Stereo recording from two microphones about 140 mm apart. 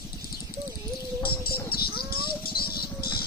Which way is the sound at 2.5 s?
90° left.